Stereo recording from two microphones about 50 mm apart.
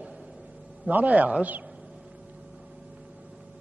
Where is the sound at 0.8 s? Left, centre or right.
Right.